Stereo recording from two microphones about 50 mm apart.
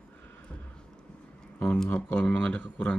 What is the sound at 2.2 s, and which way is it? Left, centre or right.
Speech, left.